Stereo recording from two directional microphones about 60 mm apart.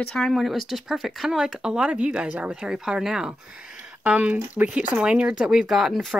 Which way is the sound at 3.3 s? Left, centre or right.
Right.